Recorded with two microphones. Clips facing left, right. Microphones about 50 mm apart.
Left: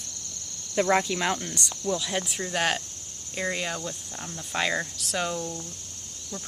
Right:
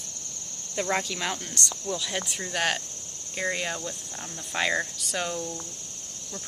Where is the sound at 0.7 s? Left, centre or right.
Centre.